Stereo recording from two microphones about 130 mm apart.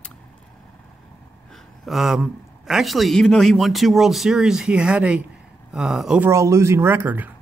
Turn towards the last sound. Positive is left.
turn(degrees=-15)  # may be behind; listen again after turning